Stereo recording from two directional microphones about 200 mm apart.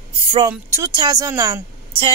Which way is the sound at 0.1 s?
25° right (ahead or behind).